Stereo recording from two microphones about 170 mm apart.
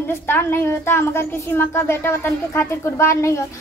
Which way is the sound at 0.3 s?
10° left (ahead or behind).